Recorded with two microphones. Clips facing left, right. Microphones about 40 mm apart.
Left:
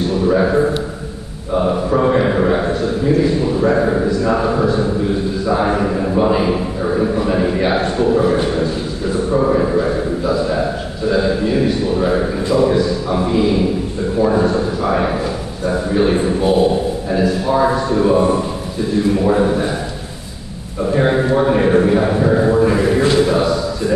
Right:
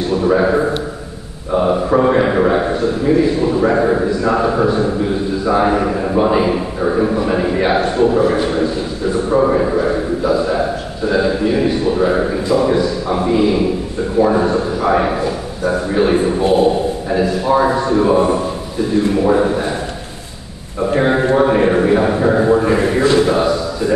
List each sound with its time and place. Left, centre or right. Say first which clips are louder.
0.2 s a man's voice: even; centre
9.3 s a man's voice: right 1 dB; centre
21.4 s a man's voice: left 1 dB; centre